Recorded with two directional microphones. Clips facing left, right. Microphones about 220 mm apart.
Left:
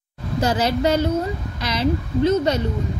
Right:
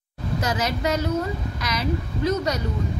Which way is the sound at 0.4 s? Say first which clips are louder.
Left 6 dB; 30° left (ahead or behind).